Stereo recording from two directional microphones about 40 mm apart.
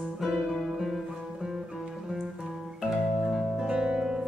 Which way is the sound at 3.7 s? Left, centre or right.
Centre.